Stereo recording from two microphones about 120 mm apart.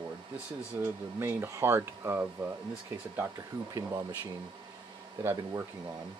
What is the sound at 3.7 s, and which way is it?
Speech, 30° right (ahead or behind).